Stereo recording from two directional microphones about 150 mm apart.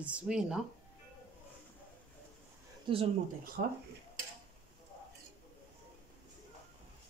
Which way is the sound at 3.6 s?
90° right.